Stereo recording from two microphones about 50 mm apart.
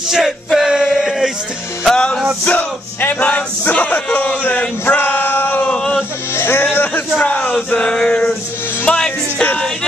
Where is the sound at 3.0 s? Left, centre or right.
Left.